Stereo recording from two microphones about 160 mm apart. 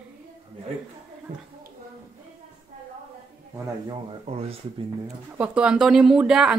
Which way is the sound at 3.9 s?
35° right (ahead or behind).